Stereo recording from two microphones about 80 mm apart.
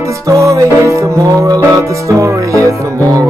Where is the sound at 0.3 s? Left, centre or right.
Right.